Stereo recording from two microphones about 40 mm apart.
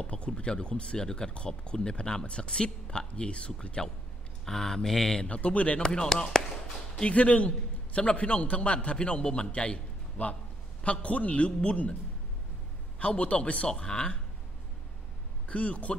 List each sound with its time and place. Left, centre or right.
0.0 s speech: left
3.8 s speech: centre
5.3 s a man's voice: left
5.8 s speech: centre
7.0 s a man's voice: left
13.0 s a man's voice: left
13.7 s speech: centre
15.4 s a man's voice: left